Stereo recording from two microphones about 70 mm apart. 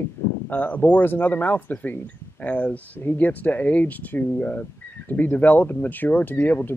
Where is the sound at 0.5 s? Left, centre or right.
Left.